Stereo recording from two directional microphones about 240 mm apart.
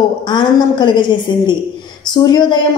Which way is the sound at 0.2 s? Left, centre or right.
Centre.